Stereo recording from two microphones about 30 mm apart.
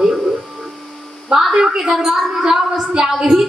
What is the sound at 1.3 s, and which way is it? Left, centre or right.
A woman's voice, centre.